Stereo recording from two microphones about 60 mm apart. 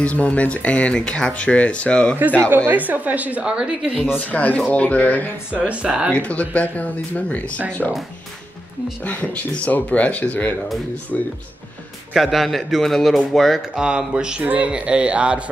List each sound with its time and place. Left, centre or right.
0.0 s speech: left
2.7 s speech: right
4.3 s speech: left
5.5 s speech: centre
6.1 s speech: left
9.0 s speech: left
12.1 s a man's voice: centre
13.6 s speech: centre